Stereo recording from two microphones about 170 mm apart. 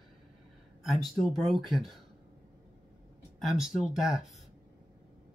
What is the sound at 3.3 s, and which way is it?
Speech, centre (ahead or behind).